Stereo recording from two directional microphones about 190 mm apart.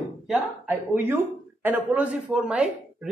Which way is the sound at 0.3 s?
5° right (ahead or behind).